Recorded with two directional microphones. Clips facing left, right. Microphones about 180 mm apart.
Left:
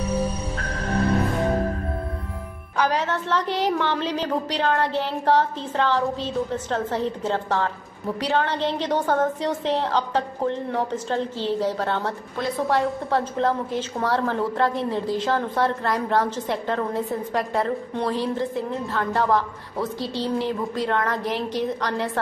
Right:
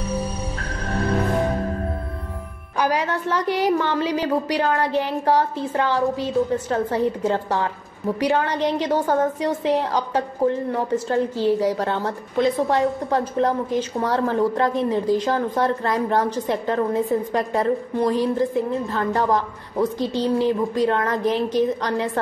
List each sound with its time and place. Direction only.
2.8 s a woman's voice: 10° right (ahead or behind)